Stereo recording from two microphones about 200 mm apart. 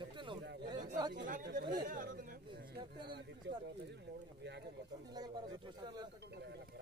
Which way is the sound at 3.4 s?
60° right (ahead or behind).